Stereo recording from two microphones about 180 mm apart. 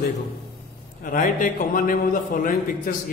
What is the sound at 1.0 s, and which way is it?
A man's voice, 50° left (ahead or behind).